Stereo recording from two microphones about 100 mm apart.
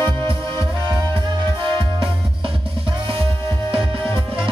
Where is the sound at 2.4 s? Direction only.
65° right (ahead or behind).